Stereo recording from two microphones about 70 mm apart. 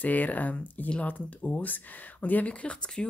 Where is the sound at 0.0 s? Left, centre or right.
Left.